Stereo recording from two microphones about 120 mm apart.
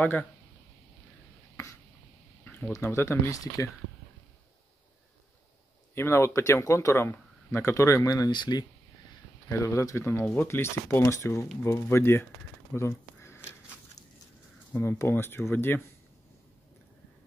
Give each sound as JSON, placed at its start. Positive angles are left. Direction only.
{"t": 0.0, "sound": "speech", "side_deg": 15}
{"t": 2.7, "sound": "speech", "side_deg": 20}
{"t": 5.9, "sound": "speech", "side_deg": 20}
{"t": 9.5, "sound": "speech", "side_deg": 25}
{"t": 12.7, "sound": "a sound", "side_deg": 20}
{"t": 14.7, "sound": "speech", "side_deg": 20}